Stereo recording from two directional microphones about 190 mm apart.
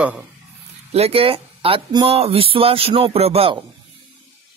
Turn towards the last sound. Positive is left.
turn(degrees=-30)  # may be behind; listen again after turning